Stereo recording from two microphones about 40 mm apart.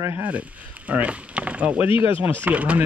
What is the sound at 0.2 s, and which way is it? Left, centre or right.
Speech, right.